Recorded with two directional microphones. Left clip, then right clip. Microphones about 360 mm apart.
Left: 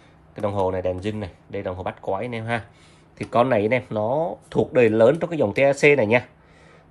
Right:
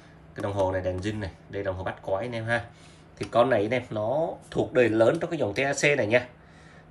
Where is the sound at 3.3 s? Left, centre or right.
Centre.